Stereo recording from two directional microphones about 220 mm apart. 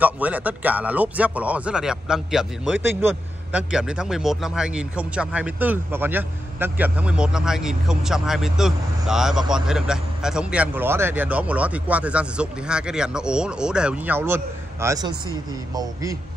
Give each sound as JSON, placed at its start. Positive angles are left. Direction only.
{"t": 0.0, "sound": "speech", "side_deg": -5}